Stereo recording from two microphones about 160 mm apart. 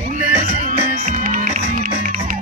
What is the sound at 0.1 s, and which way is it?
Music, 55° right (ahead or behind).